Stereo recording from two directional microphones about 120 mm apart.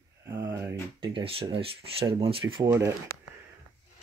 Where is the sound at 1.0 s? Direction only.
45° right (ahead or behind).